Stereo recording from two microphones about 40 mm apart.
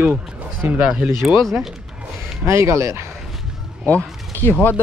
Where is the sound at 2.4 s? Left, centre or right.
Right.